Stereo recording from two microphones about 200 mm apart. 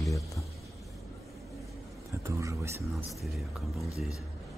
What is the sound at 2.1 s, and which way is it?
Speech, 15° right (ahead or behind).